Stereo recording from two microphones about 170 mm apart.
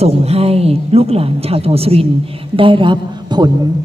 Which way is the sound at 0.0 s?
35° right (ahead or behind).